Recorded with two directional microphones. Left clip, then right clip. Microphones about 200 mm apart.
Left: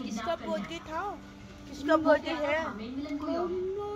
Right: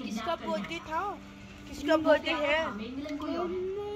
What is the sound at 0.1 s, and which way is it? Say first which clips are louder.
A woman's voice: even; 20° right (ahead or behind).